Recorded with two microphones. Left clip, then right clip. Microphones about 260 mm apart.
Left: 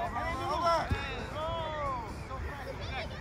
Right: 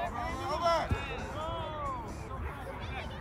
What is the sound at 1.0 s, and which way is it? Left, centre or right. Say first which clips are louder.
Music: left 1 dB; left.